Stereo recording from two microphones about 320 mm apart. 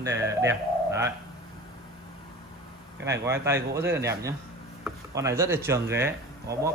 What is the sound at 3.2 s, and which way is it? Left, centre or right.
Speech, centre.